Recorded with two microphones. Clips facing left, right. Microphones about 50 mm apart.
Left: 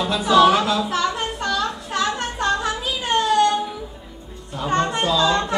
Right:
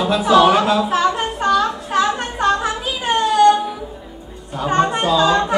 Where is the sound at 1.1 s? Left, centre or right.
Right.